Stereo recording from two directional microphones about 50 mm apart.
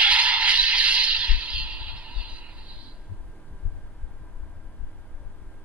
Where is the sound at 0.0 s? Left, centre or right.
Right.